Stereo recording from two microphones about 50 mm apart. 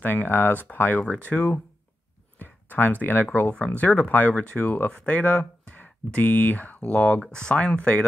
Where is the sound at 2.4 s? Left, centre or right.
Left.